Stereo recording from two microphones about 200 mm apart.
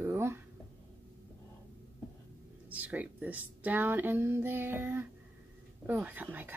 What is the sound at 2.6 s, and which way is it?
Speech, 10° right (ahead or behind).